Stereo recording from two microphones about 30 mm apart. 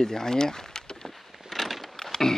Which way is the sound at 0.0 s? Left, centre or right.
Centre.